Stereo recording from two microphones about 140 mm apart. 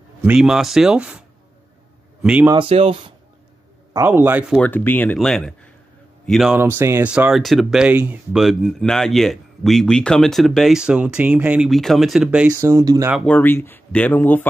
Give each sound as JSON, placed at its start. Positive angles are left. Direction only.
{"t": 0.2, "sound": "speech", "side_deg": -5}
{"t": 2.2, "sound": "speech", "side_deg": -10}
{"t": 2.5, "sound": "speech", "side_deg": -40}
{"t": 3.9, "sound": "speech", "side_deg": -15}
{"t": 4.6, "sound": "speech", "side_deg": 15}
{"t": 6.8, "sound": "speech", "side_deg": -15}
{"t": 12.5, "sound": "speech", "side_deg": -20}
{"t": 13.2, "sound": "speech", "side_deg": 10}